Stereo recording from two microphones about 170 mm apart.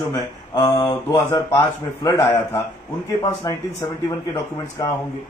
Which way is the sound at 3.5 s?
20° left (ahead or behind).